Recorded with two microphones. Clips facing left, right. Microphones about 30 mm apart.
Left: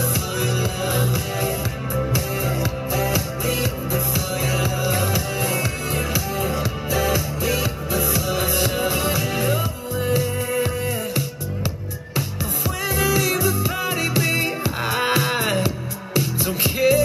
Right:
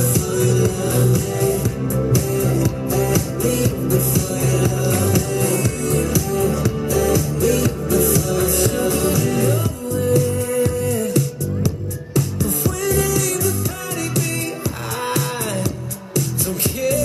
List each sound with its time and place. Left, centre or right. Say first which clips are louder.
0.1 s music: right 5 dB; left
15.0 s music: left 2 dB; left